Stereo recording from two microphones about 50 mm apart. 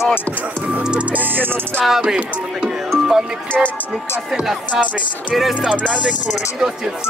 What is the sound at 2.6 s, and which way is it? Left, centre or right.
Music, centre.